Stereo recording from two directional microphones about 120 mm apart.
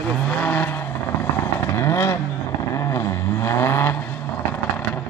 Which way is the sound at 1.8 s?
20° left (ahead or behind).